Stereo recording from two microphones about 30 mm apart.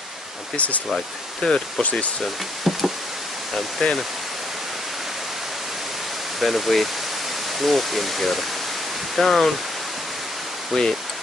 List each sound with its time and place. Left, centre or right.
0.6 s speech: left
1.4 s speech: left
1.8 s speech: left
2.7 s speech: centre
3.8 s speech: left
6.4 s speech: centre
10.7 s speech: centre